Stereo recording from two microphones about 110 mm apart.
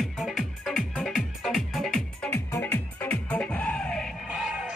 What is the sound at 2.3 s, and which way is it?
Music, 20° left (ahead or behind).